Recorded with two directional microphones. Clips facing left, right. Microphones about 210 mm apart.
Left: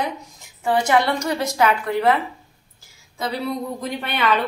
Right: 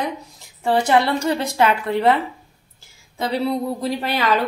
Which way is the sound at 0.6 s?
30° right (ahead or behind).